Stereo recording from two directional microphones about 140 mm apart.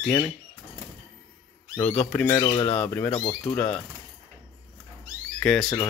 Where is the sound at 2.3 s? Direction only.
30° left (ahead or behind).